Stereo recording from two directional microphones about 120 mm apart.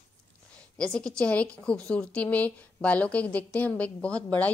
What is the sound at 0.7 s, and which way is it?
A woman's voice, 5° left (ahead or behind).